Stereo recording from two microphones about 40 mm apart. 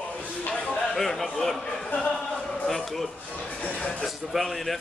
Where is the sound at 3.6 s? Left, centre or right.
Left.